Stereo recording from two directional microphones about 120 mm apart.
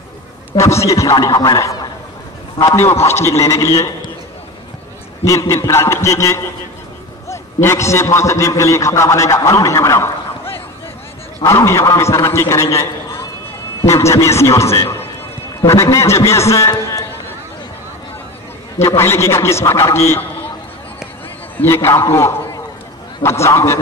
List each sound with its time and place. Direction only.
0.6 s a man's voice: 25° left (ahead or behind)
5.2 s a man's voice: 25° left (ahead or behind)
18.8 s a man's voice: 20° left (ahead or behind)
21.5 s a man's voice: 20° left (ahead or behind)